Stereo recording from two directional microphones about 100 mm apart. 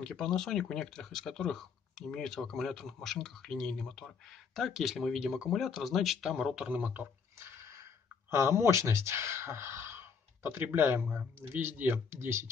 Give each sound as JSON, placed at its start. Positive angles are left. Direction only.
{"t": 0.0, "sound": "speech", "side_deg": 5}
{"t": 8.3, "sound": "speech", "side_deg": -25}